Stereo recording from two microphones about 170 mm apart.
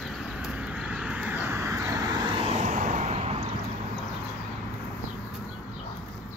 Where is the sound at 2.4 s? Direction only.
40° right (ahead or behind).